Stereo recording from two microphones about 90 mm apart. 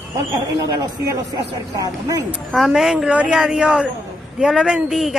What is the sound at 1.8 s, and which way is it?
Speech, 40° right (ahead or behind).